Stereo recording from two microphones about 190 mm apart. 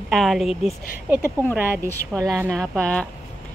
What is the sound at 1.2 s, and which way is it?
Speech, 5° left (ahead or behind).